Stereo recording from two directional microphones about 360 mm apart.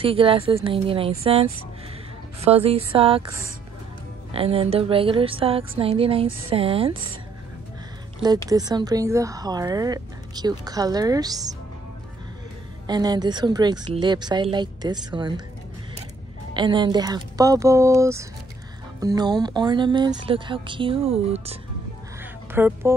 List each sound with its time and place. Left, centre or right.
0.0 s speech: centre
4.3 s speech: centre
8.5 s speech: centre
12.8 s speech: centre
16.5 s speech: centre
22.2 s a sound: centre